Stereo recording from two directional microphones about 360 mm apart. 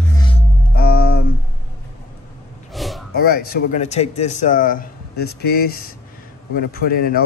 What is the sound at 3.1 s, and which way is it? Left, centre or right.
A man's voice, left.